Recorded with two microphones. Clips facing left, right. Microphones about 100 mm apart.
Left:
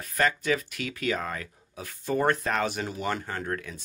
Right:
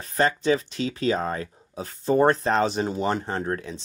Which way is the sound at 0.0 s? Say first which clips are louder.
Right 4 dB; 30° right (ahead or behind).